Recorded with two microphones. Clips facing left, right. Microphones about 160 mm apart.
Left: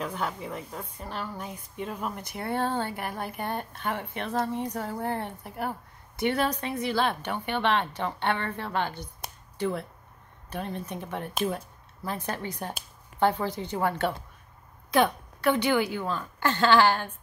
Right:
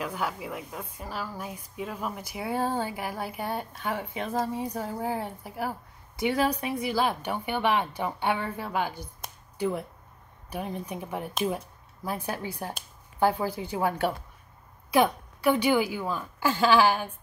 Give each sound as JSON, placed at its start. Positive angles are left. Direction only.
{"t": 0.0, "sound": "a woman's voice", "side_deg": -5}